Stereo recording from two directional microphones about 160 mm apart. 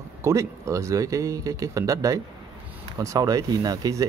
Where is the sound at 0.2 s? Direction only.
20° right (ahead or behind).